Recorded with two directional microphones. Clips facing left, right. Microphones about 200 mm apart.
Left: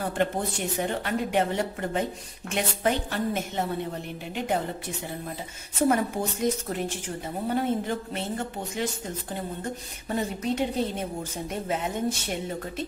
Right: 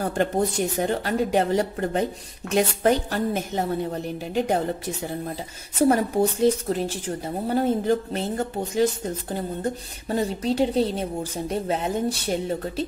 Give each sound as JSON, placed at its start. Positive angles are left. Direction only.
{"t": 0.0, "sound": "a woman's voice", "side_deg": -40}
{"t": 5.9, "sound": "a woman's voice", "side_deg": -35}